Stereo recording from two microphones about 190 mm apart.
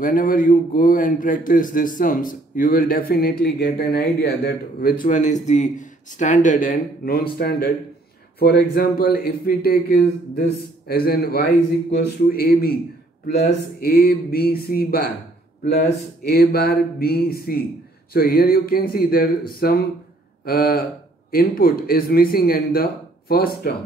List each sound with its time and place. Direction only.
0.0 s a man's voice: 45° left (ahead or behind)
16.3 s a man's voice: 55° left (ahead or behind)